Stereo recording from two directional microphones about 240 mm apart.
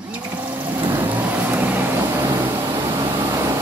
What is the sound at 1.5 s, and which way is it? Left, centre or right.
Vehicle, centre.